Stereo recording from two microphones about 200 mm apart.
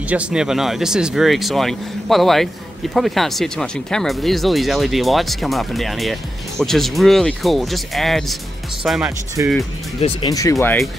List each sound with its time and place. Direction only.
0.1 s speech: 5° right (ahead or behind)
9.4 s speech: 15° right (ahead or behind)
10.0 s speech: 20° left (ahead or behind)